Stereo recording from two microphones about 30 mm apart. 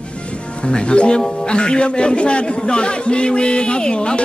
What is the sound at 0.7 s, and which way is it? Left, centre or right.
A man's voice, left.